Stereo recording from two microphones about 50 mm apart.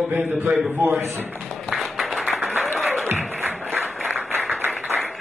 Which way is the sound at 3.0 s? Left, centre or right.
Right.